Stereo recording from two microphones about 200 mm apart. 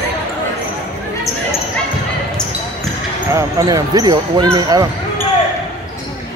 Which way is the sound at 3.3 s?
20° right (ahead or behind).